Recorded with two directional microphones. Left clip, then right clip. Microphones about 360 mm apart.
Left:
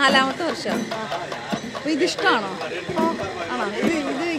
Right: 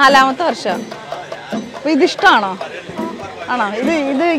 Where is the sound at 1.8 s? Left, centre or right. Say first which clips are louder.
Right 9 dB; right.